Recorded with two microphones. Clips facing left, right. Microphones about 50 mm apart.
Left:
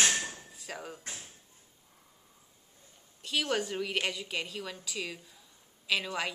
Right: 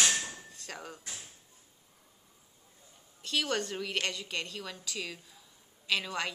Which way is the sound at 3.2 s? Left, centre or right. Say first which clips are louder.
Left 1 dB; centre.